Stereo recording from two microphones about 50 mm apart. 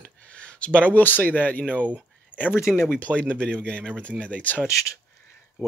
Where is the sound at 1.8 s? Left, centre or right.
Right.